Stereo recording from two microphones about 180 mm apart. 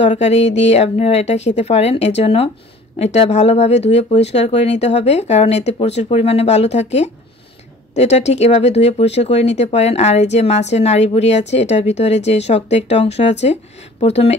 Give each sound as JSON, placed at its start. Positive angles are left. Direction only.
{"t": 0.0, "sound": "speech", "side_deg": 40}